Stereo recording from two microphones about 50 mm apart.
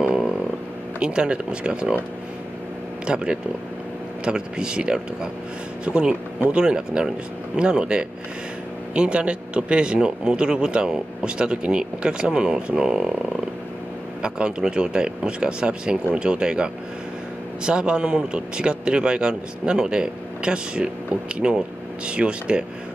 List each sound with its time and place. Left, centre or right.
0.9 s speech: centre
3.1 s speech: right
14.2 s speech: centre